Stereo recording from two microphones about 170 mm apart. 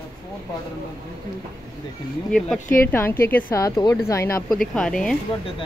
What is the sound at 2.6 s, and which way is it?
Speech, 50° left (ahead or behind).